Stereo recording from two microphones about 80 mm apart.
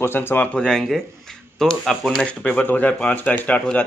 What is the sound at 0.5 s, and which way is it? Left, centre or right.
Speech, centre.